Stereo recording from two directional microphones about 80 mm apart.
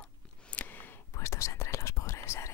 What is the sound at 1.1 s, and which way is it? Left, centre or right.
Whispering, left.